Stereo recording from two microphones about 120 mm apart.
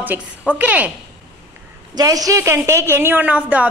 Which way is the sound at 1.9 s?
30° right (ahead or behind).